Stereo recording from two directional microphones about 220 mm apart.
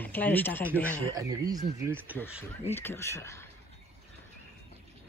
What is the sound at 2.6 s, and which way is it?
Speech, 10° left (ahead or behind).